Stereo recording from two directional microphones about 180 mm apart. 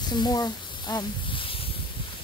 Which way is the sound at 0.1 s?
20° left (ahead or behind).